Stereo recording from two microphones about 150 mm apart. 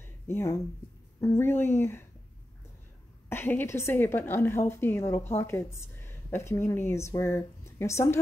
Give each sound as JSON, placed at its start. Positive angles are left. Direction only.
{"t": 0.0, "sound": "a sound", "side_deg": 15}
{"t": 1.2, "sound": "a woman's voice", "side_deg": 15}
{"t": 3.3, "sound": "a woman's voice", "side_deg": 15}